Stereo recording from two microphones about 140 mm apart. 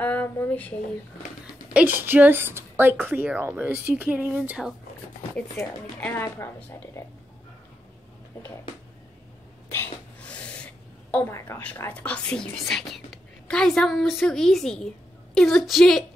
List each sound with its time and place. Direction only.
0.0 s speech: 10° left (ahead or behind)
1.7 s speech: 10° right (ahead or behind)
5.9 s speech: 10° left (ahead or behind)
9.7 s a sound: 10° left (ahead or behind)
11.3 s speech: 15° left (ahead or behind); by 16.0 s centre (ahead or behind)